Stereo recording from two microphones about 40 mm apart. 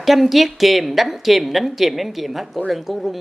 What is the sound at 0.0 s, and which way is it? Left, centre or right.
Speech, centre.